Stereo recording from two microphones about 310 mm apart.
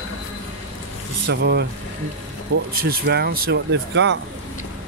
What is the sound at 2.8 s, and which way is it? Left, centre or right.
Speech, right.